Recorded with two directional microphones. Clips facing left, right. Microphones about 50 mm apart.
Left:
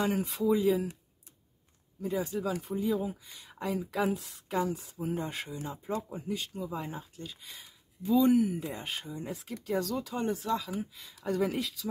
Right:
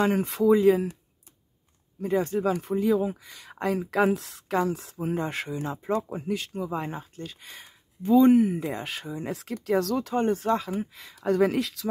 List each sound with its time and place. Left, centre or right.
0.0 s speech: right
2.0 s speech: right
4.9 s speech: right
8.5 s speech: right
11.2 s speech: right